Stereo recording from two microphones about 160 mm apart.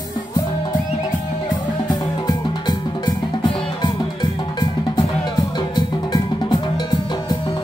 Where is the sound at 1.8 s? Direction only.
25° left (ahead or behind).